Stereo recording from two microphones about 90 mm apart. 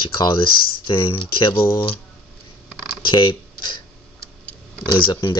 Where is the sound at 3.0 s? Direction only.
60° left (ahead or behind).